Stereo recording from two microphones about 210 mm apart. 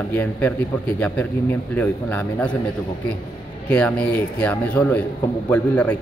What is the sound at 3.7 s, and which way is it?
A man's voice, 5° left (ahead or behind).